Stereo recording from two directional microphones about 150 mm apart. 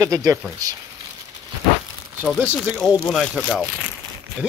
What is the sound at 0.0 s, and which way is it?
Speech, 20° right (ahead or behind).